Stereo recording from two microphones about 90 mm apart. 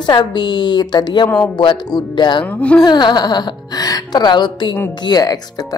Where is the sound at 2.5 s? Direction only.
15° left (ahead or behind).